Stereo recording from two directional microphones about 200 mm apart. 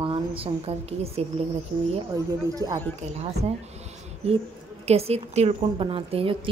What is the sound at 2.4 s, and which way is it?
Speech, 20° right (ahead or behind).